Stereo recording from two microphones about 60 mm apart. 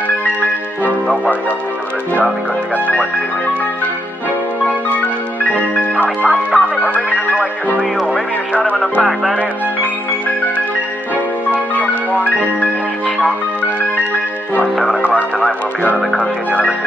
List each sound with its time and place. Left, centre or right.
5.4 s music: left
6.9 s music: right
11.5 s music: left